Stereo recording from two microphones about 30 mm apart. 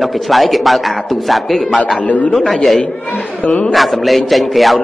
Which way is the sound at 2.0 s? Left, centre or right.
Left.